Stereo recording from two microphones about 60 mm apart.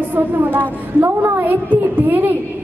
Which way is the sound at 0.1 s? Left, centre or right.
Right.